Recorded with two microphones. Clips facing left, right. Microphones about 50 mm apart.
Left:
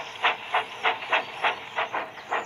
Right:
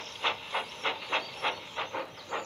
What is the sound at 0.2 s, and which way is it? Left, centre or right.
Hiss, left.